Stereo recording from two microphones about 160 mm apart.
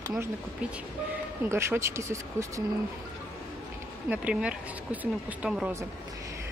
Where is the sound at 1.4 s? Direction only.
15° right (ahead or behind).